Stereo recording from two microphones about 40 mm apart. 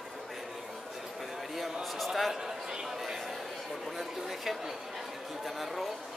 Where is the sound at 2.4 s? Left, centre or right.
Centre.